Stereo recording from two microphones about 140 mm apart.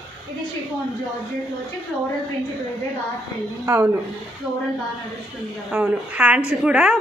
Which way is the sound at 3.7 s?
15° right (ahead or behind).